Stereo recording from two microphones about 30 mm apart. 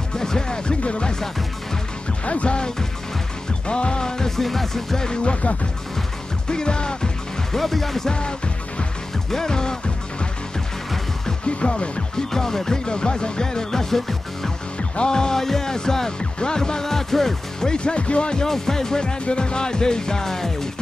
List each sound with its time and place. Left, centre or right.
0.1 s music: left
0.8 s speech: left
2.2 s music: left
3.6 s speech: left
4.4 s music: centre
4.9 s music: left
6.5 s music: left
7.5 s music: centre
8.1 s music: left
11.4 s music: left
12.2 s music: centre
15.0 s music: left
17.7 s speech: left
18.4 s music: centre